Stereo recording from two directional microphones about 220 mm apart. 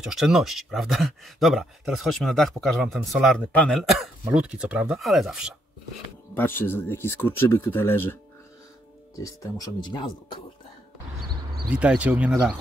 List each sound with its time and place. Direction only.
0.0 s speech: centre (ahead or behind)
6.3 s speech: 10° left (ahead or behind)
9.2 s speech: 15° left (ahead or behind)
11.7 s speech: 5° right (ahead or behind)